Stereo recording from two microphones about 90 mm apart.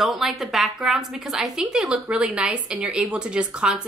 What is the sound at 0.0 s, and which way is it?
Speech, centre (ahead or behind).